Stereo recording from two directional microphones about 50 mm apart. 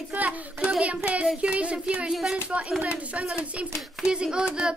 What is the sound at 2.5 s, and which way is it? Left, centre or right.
Speech, centre.